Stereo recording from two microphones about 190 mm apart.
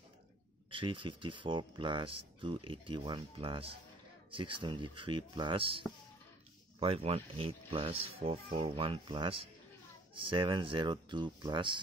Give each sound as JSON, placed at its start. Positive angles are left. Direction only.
{"t": 0.7, "sound": "speech", "side_deg": -25}